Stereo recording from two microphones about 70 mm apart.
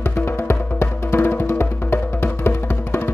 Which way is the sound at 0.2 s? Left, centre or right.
Left.